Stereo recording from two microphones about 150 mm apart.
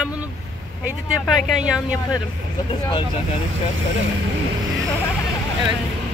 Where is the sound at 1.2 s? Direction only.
5° right (ahead or behind).